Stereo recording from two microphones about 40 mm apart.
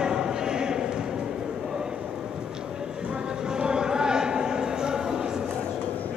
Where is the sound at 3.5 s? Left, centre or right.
Centre.